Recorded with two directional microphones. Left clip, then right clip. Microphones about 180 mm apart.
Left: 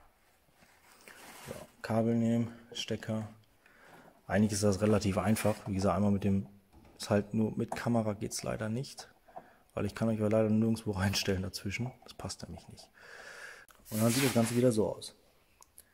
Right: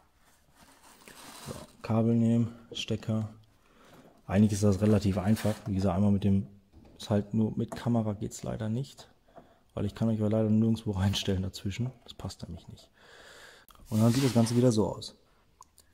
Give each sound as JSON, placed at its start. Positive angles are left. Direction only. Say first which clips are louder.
{"t": 1.8, "sound": "speech", "louder": "right 2 dB", "side_deg": -15}
{"t": 4.3, "sound": "speech", "louder": "right 2 dB", "side_deg": -15}
{"t": 13.8, "sound": "speech", "louder": "right 2 dB", "side_deg": -20}